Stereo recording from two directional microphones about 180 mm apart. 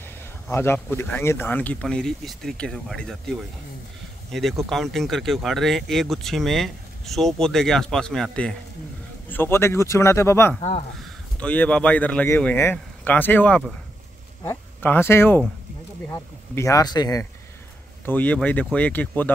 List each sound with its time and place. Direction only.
0.0 s a sound: 15° left (ahead or behind)
0.8 s speech: 10° left (ahead or behind)
18.0 s speech: 10° left (ahead or behind)